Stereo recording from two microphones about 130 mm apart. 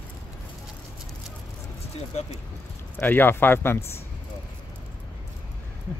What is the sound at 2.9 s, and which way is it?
Speech, 15° left (ahead or behind).